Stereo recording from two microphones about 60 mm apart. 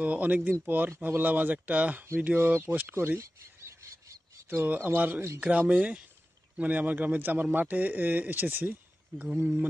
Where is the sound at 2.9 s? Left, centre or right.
Right.